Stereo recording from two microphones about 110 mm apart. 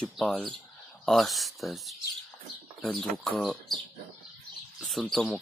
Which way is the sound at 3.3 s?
5° left (ahead or behind).